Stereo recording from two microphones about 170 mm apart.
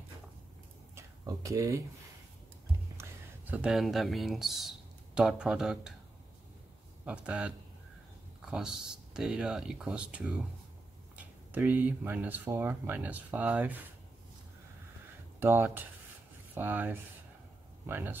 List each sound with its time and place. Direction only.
0.9 s a sound: 20° right (ahead or behind)
3.0 s speech: 10° right (ahead or behind)
7.1 s speech: 5° right (ahead or behind)
15.4 s speech: 10° right (ahead or behind)